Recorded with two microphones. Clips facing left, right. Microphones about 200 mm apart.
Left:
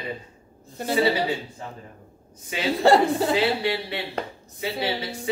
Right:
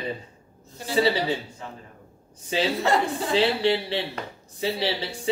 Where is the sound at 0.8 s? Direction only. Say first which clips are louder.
Left 7 dB; 55° left (ahead or behind).